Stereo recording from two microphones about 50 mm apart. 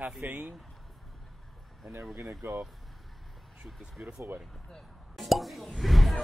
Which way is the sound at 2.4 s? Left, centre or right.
Right.